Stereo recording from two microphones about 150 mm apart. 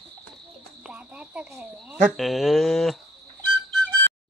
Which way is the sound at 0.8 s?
10° right (ahead or behind).